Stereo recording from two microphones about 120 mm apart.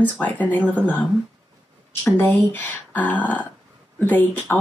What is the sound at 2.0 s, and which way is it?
Speech, 20° left (ahead or behind).